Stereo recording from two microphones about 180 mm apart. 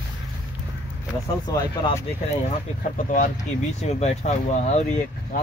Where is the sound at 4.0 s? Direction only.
40° left (ahead or behind).